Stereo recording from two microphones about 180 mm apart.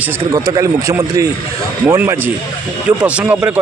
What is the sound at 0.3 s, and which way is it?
A man's voice, 15° right (ahead or behind).